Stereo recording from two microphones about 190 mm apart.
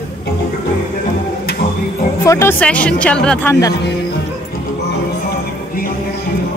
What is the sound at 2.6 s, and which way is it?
Speech, 5° left (ahead or behind).